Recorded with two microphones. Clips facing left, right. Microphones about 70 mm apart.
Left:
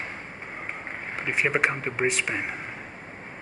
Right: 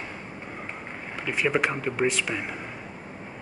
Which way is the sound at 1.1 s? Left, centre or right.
Left.